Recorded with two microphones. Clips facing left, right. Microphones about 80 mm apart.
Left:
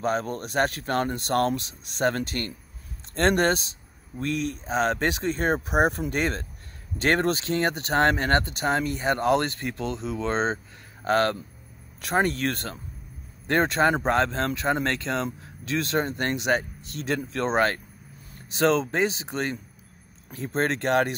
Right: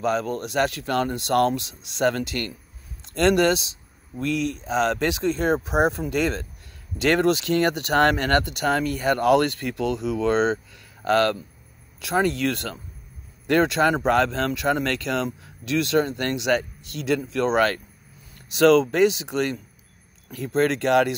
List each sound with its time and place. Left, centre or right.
0.0 s speech: left